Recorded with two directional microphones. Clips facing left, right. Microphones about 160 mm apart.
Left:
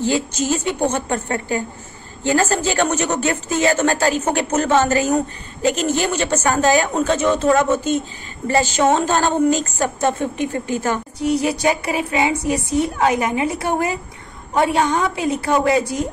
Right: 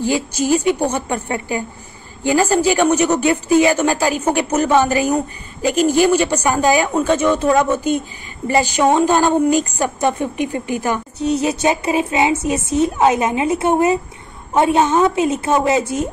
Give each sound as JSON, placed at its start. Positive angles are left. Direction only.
{"t": 0.0, "sound": "a woman's voice", "side_deg": -10}